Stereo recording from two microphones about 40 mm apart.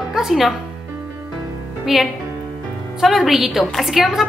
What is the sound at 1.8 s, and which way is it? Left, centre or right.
A woman's voice, centre.